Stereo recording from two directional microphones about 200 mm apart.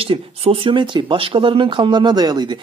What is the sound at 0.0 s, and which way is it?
Speech, 30° right (ahead or behind).